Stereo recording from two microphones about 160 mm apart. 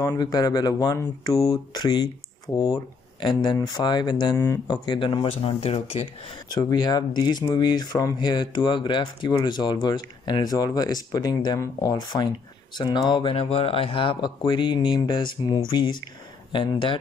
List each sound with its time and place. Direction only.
0.0 s speech: 25° left (ahead or behind)
4.8 s speech: 30° left (ahead or behind)
6.5 s speech: 25° left (ahead or behind)